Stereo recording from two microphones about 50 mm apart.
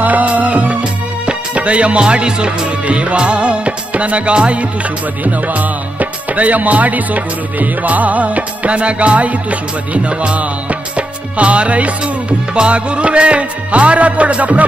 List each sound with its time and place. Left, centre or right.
0.0 s music: right